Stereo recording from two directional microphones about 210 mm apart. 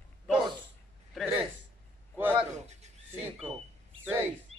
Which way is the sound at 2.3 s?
30° right (ahead or behind).